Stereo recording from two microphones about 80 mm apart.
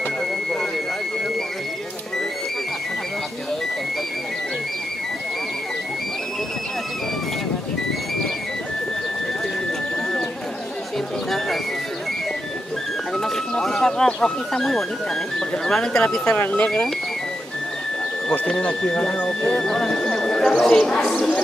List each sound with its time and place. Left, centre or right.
11.2 s music: centre
13.1 s music: centre
15.6 s speech: centre
16.3 s speech: centre
18.3 s speech: centre